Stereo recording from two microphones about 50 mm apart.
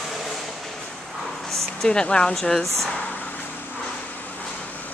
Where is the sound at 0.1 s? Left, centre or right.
Centre.